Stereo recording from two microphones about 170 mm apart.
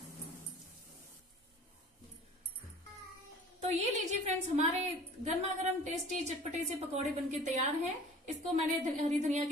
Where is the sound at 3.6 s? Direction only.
40° right (ahead or behind).